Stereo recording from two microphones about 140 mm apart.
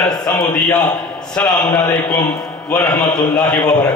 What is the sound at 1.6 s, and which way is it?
Speech, 30° left (ahead or behind).